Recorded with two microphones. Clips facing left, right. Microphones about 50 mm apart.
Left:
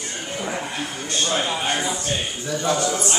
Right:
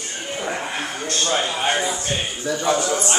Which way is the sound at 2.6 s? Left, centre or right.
Centre.